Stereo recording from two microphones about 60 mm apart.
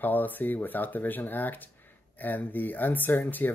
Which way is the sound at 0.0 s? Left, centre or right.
Left.